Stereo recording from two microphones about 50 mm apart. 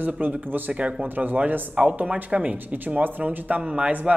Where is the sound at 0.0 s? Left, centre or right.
Right.